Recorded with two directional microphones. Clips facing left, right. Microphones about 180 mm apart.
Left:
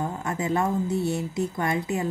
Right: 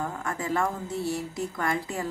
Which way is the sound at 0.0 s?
20° left (ahead or behind).